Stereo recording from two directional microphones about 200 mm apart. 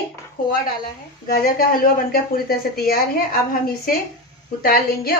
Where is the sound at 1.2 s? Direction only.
45° left (ahead or behind).